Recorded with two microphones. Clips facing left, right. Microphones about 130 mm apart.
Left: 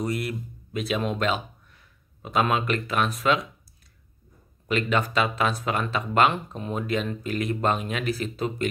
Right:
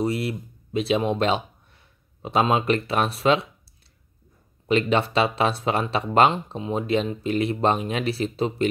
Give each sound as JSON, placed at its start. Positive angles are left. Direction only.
{"t": 0.0, "sound": "speech", "side_deg": -25}
{"t": 4.6, "sound": "speech", "side_deg": -30}
{"t": 6.3, "sound": "speech", "side_deg": -20}